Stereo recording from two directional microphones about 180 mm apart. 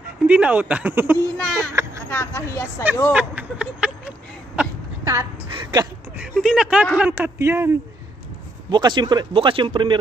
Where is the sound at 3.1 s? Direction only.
5° right (ahead or behind).